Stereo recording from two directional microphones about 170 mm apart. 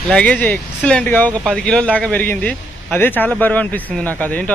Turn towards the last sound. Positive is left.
turn(degrees=10)  # may be behind; listen again after turning